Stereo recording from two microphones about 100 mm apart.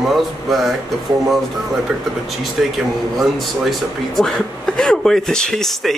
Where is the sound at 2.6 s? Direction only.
5° right (ahead or behind).